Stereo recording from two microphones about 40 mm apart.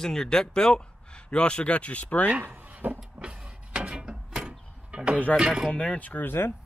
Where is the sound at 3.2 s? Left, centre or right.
Right.